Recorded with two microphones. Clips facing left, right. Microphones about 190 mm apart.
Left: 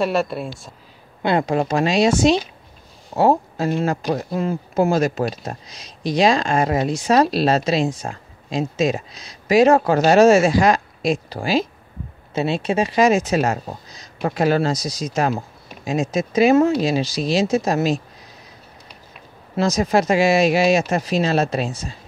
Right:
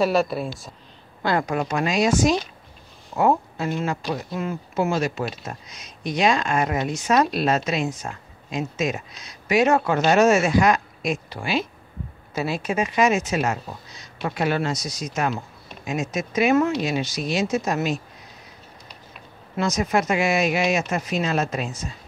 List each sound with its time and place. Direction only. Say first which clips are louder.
0.0 s speech: even; centre (ahead or behind)
1.2 s a woman's voice: left 4 dB; 25° left (ahead or behind)
19.5 s speech: left 4 dB; 30° left (ahead or behind)